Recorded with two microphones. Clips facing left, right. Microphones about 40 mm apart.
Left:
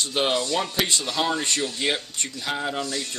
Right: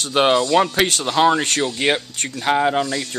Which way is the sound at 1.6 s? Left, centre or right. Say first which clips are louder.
Right 6 dB; right.